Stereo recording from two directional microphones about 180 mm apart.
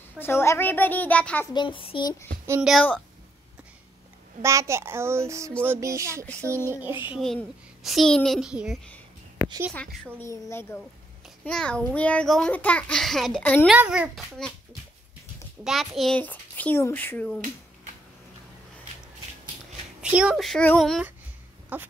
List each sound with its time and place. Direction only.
0.2 s a child's voice: 15° left (ahead or behind)
1.5 s speech: 25° left (ahead or behind)
2.6 s a child's voice: 5° left (ahead or behind)
4.4 s a child's voice: 15° right (ahead or behind)
7.2 s a child's voice: centre (ahead or behind)
10.2 s a child's voice: 15° left (ahead or behind)
13.7 s a child's voice: 5° right (ahead or behind)
15.6 s a child's voice: centre (ahead or behind)
20.0 s a child's voice: 5° right (ahead or behind)
21.7 s a child's voice: 10° right (ahead or behind)